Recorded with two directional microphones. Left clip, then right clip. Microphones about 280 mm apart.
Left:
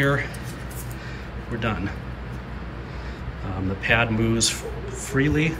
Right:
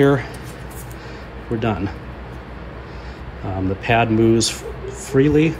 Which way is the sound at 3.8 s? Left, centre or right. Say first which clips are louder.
Right 5 dB; centre.